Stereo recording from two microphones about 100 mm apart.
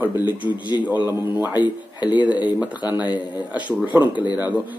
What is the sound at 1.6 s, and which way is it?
Speech, 45° left (ahead or behind).